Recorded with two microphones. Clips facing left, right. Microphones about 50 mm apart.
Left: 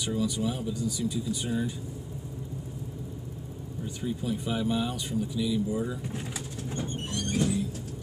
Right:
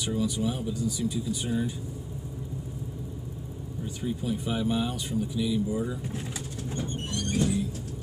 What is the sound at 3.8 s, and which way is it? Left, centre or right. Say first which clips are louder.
Speech: right 1 dB; centre.